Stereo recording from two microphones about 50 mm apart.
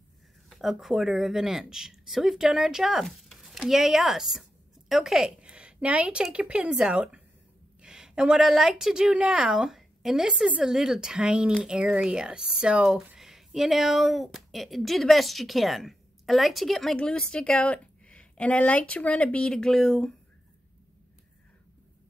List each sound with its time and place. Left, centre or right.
0.6 s speech: centre
3.3 s a sound: centre; by 6.2 s right
6.3 s speech: right
7.8 s a sound: centre
8.4 s speech: centre
13.2 s speech: centre
17.0 s a woman's voice: centre
19.7 s speech: centre